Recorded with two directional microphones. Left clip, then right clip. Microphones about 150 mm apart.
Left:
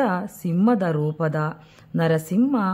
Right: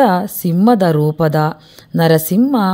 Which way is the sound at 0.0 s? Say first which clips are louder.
Right 11 dB; 35° right (ahead or behind).